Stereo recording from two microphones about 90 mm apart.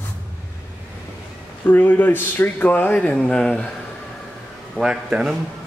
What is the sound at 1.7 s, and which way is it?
Speech, 20° left (ahead or behind).